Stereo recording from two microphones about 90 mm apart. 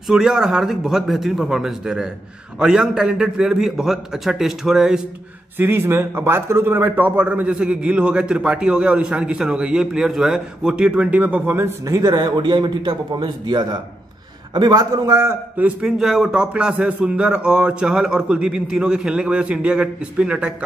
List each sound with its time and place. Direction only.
0.1 s a man's voice: 5° right (ahead or behind)
5.6 s a man's voice: 25° right (ahead or behind)
11.8 s speech: 45° right (ahead or behind)
15.5 s a man's voice: 15° right (ahead or behind)
16.0 s a man's voice: 5° right (ahead or behind)